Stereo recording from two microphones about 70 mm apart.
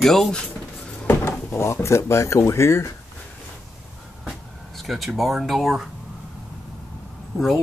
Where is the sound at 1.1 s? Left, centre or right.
Left.